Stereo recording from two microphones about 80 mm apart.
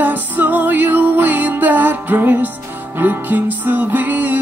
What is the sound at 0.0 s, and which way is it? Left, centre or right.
Music, right.